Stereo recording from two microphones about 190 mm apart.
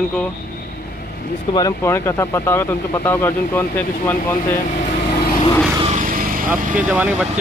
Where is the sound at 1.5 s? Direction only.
20° left (ahead or behind).